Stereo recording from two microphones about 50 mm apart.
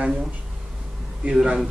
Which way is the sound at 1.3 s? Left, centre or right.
Centre.